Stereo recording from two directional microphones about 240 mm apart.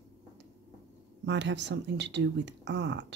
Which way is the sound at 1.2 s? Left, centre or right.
Right.